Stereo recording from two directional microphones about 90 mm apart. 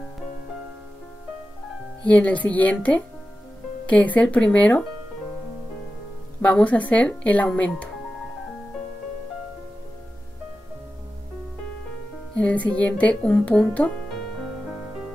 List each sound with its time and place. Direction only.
2.0 s speech: 15° left (ahead or behind)
6.4 s speech: 15° left (ahead or behind)
12.4 s speech: 15° left (ahead or behind)